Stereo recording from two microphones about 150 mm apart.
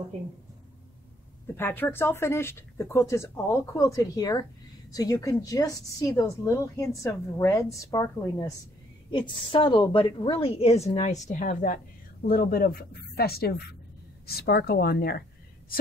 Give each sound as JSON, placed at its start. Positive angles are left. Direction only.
{"t": 1.6, "sound": "a woman's voice", "side_deg": 15}
{"t": 9.3, "sound": "a woman's voice", "side_deg": 35}
{"t": 11.0, "sound": "speech", "side_deg": 55}